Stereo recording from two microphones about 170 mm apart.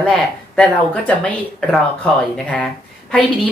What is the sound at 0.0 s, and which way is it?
Speech, 5° left (ahead or behind).